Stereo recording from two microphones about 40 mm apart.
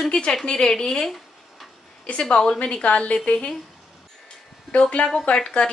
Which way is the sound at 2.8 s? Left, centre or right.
Left.